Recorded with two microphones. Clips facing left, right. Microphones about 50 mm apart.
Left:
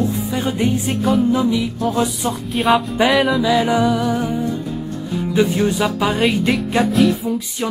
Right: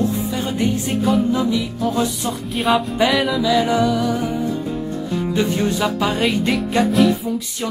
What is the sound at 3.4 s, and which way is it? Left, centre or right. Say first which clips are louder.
Music: left 1 dB; centre.